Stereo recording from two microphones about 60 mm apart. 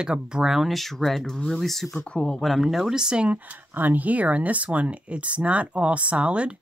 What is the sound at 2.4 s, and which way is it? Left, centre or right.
Speech, centre.